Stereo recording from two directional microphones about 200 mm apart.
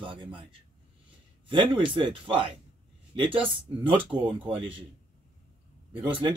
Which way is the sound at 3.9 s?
25° right (ahead or behind).